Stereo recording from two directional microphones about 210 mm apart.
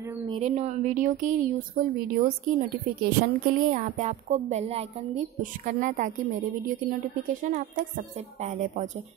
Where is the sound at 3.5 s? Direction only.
40° right (ahead or behind).